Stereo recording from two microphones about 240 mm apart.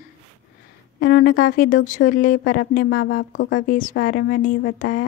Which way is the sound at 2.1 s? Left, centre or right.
Left.